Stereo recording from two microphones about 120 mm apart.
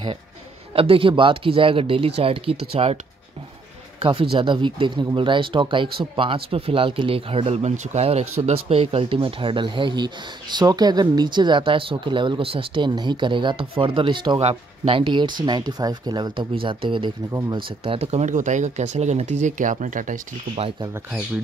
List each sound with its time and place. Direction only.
0.7 s speech: 50° right (ahead or behind)
4.0 s speech: 50° right (ahead or behind); by 20.2 s 90° right